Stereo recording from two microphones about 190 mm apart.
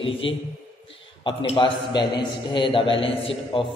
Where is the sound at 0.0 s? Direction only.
30° left (ahead or behind).